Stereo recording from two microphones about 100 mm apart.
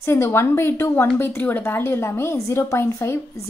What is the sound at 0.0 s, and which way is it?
A woman's voice, 25° left (ahead or behind).